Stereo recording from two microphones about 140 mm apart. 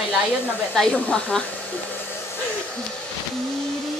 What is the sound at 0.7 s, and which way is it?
Speech, 5° left (ahead or behind).